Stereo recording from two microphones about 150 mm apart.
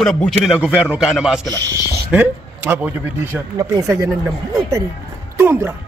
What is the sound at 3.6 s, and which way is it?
Speech, 20° right (ahead or behind).